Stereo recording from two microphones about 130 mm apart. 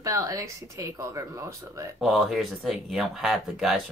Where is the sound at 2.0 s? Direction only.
Centre (ahead or behind).